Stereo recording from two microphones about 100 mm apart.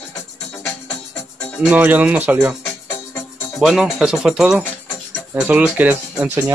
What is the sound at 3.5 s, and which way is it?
Speech, 5° right (ahead or behind).